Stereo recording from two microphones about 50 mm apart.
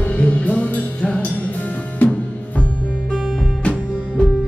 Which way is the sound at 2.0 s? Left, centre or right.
Left.